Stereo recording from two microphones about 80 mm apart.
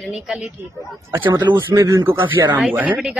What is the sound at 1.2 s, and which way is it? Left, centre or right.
Speech, right.